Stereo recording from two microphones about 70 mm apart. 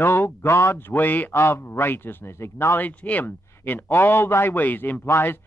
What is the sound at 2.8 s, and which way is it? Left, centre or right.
Speech, left.